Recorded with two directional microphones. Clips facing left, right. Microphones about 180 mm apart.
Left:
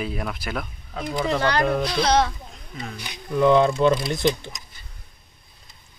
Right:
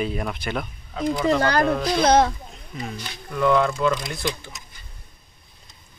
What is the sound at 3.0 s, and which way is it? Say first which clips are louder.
Speech: left 4 dB; 20° left (ahead or behind).